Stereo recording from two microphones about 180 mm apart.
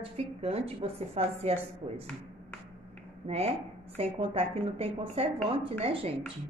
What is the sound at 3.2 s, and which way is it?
Speech, 35° right (ahead or behind).